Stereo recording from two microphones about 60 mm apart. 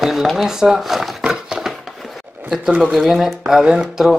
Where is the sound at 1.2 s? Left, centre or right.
Centre.